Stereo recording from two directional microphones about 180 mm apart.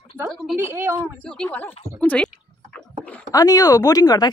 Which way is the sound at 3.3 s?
20° left (ahead or behind).